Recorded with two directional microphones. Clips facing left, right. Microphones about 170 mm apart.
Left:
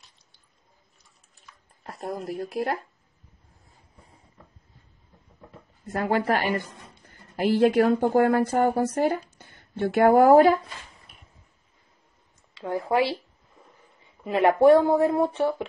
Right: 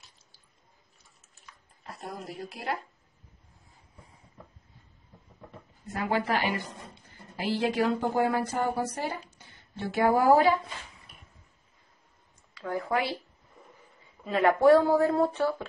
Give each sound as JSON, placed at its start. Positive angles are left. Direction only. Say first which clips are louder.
{"t": 1.8, "sound": "speech", "louder": "left 7 dB", "side_deg": 50}
{"t": 5.9, "sound": "a woman's voice", "louder": "left 5 dB", "side_deg": 45}
{"t": 12.5, "sound": "speech", "louder": "left 5 dB", "side_deg": 25}
{"t": 14.2, "sound": "speech", "louder": "left 4 dB", "side_deg": 25}